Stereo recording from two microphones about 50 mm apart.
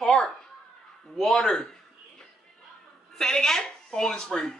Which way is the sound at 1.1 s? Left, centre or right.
Centre.